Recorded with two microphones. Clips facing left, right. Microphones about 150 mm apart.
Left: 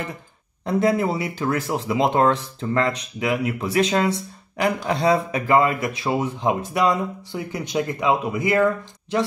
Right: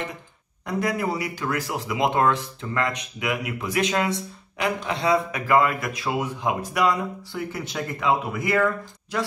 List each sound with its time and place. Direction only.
0.7 s speech: 25° left (ahead or behind)